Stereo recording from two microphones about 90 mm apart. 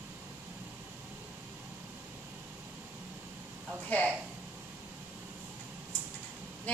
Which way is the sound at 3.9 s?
15° left (ahead or behind).